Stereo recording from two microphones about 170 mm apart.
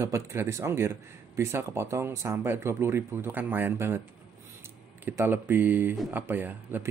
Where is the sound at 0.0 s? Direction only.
15° right (ahead or behind).